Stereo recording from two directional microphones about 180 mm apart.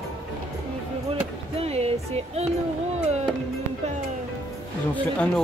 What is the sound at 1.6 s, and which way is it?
Music, 35° right (ahead or behind).